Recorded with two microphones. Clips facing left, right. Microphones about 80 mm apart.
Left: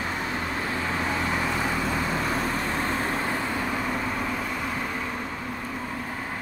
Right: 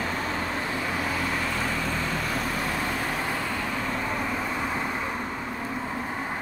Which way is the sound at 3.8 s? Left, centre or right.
Centre.